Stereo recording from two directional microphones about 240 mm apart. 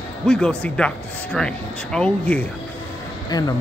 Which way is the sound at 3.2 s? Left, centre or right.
Centre.